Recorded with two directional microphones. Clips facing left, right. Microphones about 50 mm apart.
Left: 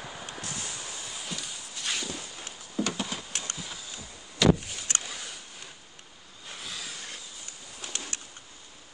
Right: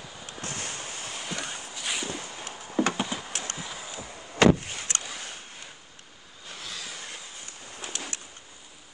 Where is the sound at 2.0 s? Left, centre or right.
Right.